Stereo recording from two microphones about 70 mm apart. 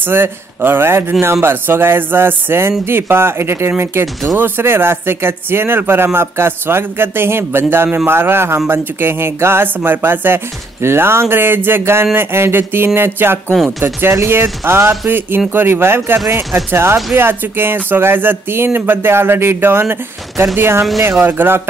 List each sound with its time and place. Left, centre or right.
0.0 s speech: right